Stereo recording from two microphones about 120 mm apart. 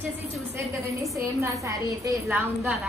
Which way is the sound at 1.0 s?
25° right (ahead or behind).